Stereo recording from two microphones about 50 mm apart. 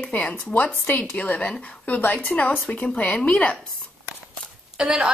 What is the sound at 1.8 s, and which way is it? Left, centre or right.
A woman's voice, left.